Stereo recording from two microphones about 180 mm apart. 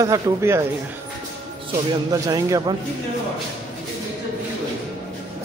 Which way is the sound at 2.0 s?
20° right (ahead or behind).